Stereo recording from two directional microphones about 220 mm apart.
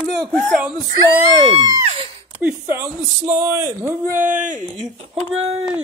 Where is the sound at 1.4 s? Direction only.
20° right (ahead or behind).